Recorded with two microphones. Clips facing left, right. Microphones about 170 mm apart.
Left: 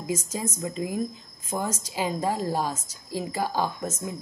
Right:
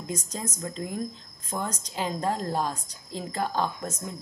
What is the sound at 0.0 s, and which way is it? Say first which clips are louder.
A woman's voice: left 4 dB; 5° left (ahead or behind).